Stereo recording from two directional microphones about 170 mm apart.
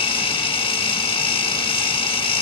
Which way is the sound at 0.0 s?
30° left (ahead or behind).